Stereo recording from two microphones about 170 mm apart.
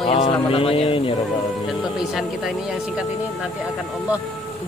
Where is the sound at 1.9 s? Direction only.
Centre (ahead or behind).